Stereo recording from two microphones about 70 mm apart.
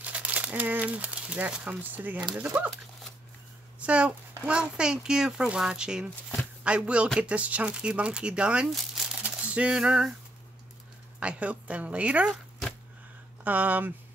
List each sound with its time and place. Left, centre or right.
0.0 s a woman's voice: centre
3.8 s speech: centre
9.2 s a sound: centre
11.1 s a woman's voice: centre
13.4 s speech: right